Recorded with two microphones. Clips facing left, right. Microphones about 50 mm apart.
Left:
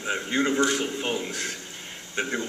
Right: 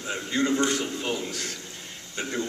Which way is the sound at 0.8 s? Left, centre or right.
Left.